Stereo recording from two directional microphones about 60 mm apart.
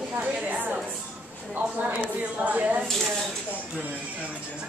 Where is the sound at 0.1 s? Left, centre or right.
Right.